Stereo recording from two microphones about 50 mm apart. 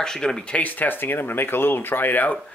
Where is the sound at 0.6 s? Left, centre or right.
Left.